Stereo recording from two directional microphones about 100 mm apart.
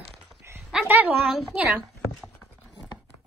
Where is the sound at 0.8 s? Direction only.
20° right (ahead or behind).